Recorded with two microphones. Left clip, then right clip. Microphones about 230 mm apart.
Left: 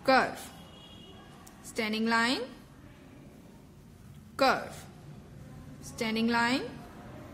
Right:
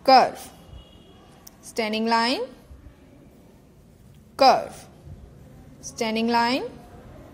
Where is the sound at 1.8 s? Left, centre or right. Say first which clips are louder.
Right 6 dB; right.